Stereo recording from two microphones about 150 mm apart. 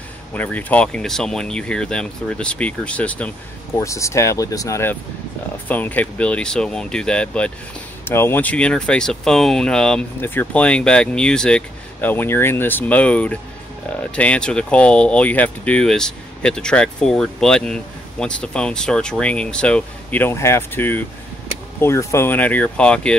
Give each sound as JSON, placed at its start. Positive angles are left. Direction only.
{"t": 0.3, "sound": "speech", "side_deg": 10}
{"t": 3.7, "sound": "speech", "side_deg": 20}